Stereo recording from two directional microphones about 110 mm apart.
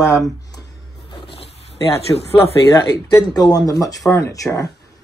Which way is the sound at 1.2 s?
55° left (ahead or behind).